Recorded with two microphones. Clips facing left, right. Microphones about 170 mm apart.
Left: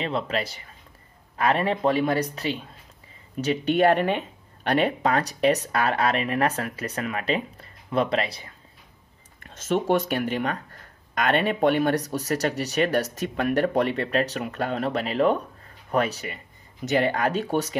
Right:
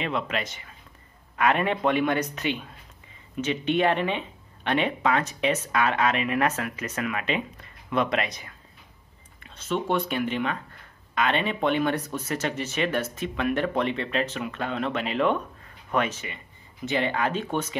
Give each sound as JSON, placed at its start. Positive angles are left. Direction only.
{"t": 0.0, "sound": "speech", "side_deg": 35}
{"t": 9.4, "sound": "speech", "side_deg": 45}